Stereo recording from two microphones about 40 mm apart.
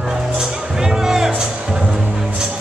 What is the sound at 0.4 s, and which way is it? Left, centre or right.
Music, centre.